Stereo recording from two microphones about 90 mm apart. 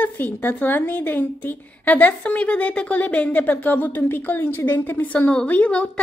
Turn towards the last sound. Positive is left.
turn(degrees=15)  # may be behind; listen again after turning